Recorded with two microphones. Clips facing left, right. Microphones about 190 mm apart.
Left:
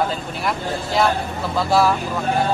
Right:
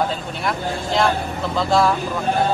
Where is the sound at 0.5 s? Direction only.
5° left (ahead or behind).